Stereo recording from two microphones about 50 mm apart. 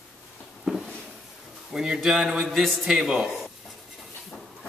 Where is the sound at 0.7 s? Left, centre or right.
Centre.